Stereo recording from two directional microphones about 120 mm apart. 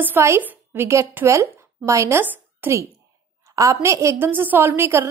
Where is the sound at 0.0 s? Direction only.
20° right (ahead or behind).